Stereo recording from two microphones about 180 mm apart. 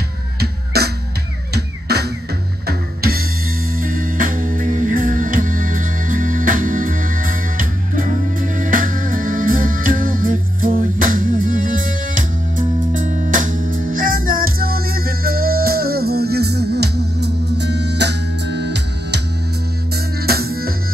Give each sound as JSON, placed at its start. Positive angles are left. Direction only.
{"t": 0.4, "sound": "music", "side_deg": -60}
{"t": 1.5, "sound": "drum", "side_deg": -65}
{"t": 2.6, "sound": "music", "side_deg": -55}
{"t": 20.2, "sound": "music", "side_deg": -60}